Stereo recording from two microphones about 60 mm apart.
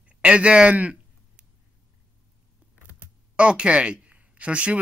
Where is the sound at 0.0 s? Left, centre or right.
Centre.